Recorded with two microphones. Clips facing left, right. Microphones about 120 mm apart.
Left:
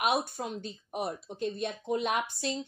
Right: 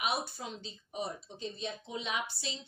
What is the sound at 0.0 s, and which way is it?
Speech, 55° left (ahead or behind).